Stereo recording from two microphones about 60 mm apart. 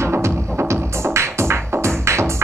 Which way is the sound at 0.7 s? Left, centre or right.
Right.